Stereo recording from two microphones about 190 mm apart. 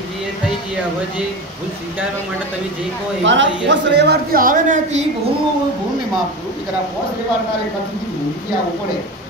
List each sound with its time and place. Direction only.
3.3 s speech: 70° right (ahead or behind); by 5.0 s 45° right (ahead or behind)